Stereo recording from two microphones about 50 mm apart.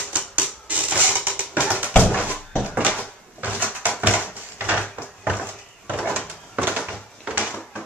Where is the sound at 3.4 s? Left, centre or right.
Right.